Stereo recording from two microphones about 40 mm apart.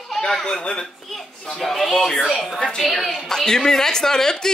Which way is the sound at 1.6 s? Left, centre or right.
Centre.